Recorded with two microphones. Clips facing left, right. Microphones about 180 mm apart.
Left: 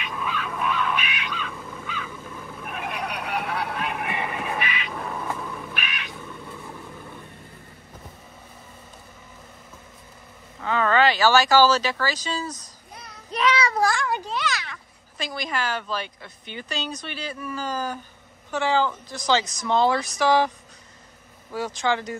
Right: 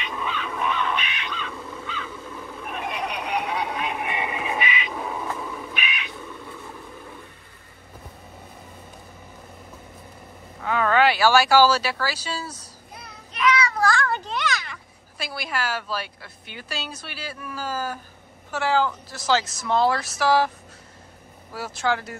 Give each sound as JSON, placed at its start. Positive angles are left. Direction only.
{"t": 0.1, "sound": "crow", "side_deg": 5}
{"t": 2.6, "sound": "a sound", "side_deg": 5}
{"t": 3.6, "sound": "vehicle", "side_deg": 0}
{"t": 10.6, "sound": "a sound", "side_deg": -5}
{"t": 13.3, "sound": "child singing", "side_deg": 30}
{"t": 13.7, "sound": "a child's voice", "side_deg": 15}
{"t": 21.5, "sound": "a woman's voice", "side_deg": -5}